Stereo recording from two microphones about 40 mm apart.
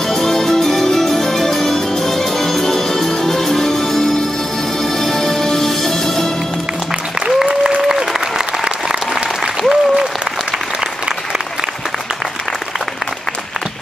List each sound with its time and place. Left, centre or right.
0.1 s music: centre
7.2 s applause: centre